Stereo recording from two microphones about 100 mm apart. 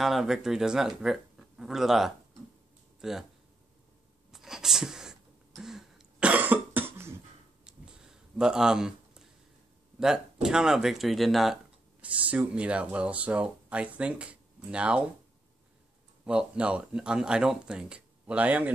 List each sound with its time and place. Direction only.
0.0 s speech: 5° right (ahead or behind)
4.3 s a sound: 5° right (ahead or behind)
5.6 s cough: 5° right (ahead or behind); by 7.2 s 25° right (ahead or behind)
7.6 s a sound: 10° right (ahead or behind)
9.9 s speech: 5° right (ahead or behind)
12.0 s speech: 15° right (ahead or behind)
16.3 s speech: 10° right (ahead or behind)